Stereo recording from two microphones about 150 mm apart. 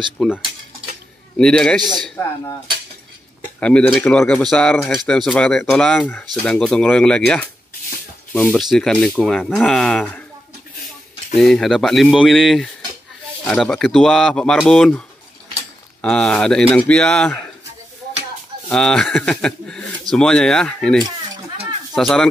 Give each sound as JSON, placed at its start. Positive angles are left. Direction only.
{"t": 0.2, "sound": "speech", "side_deg": 0}
{"t": 1.4, "sound": "speech", "side_deg": 5}
{"t": 1.8, "sound": "a man's voice", "side_deg": -30}
{"t": 3.5, "sound": "speech", "side_deg": 5}
{"t": 11.3, "sound": "speech", "side_deg": 5}
{"t": 18.7, "sound": "speech", "side_deg": 5}